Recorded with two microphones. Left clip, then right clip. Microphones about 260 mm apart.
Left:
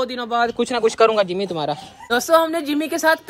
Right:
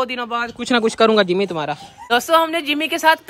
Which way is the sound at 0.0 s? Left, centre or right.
Centre.